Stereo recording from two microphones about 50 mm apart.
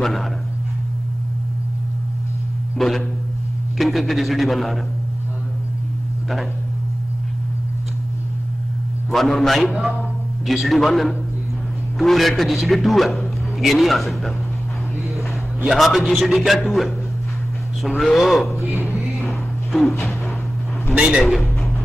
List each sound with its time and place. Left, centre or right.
0.0 s a man's voice: centre
2.8 s a man's voice: centre
9.1 s a man's voice: centre
15.7 s a man's voice: centre
20.9 s a man's voice: centre